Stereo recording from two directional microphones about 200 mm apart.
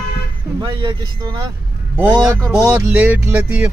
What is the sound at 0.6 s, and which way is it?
Speech, 25° right (ahead or behind).